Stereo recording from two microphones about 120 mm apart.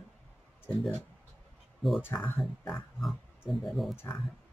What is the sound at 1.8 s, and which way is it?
Speech, centre (ahead or behind).